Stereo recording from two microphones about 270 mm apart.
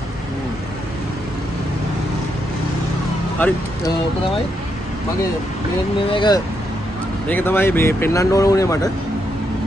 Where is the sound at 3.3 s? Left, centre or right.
Centre.